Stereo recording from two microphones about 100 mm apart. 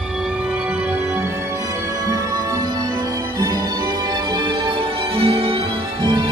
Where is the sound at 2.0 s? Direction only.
40° right (ahead or behind); by 5.6 s 70° right (ahead or behind).